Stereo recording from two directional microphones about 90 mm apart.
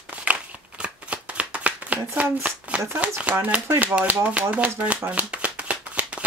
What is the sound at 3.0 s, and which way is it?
Speech, 15° right (ahead or behind).